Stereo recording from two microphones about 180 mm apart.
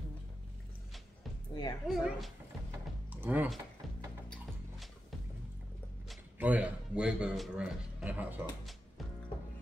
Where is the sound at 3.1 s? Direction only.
10° right (ahead or behind).